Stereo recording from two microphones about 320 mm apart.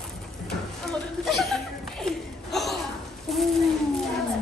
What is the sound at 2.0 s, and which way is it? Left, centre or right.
Gasp, centre.